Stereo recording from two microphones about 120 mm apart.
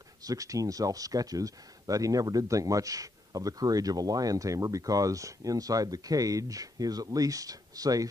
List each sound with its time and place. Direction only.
0.2 s speech: 30° right (ahead or behind)